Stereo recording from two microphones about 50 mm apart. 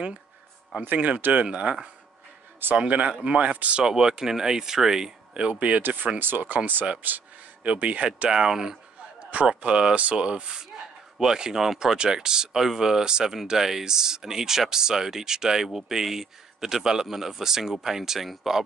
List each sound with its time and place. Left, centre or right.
0.9 s speech: right
3.8 s speech: centre
5.5 s speech: right
5.8 s speech: right
7.0 s a sound: right
7.7 s speech: right
8.3 s speech: centre